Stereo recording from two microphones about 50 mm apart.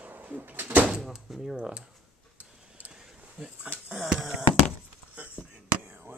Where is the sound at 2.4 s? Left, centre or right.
Right.